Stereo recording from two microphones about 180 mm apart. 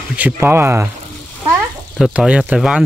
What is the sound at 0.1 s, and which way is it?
Speech, 10° right (ahead or behind).